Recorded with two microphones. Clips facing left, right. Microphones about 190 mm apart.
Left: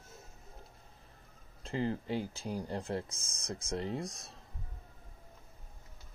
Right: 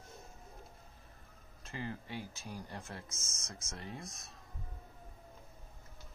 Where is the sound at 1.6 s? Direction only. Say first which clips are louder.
Left 9 dB; 30° left (ahead or behind).